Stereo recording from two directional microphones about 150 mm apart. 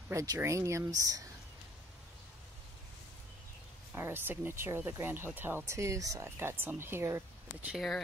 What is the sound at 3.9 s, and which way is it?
Speech, 15° right (ahead or behind).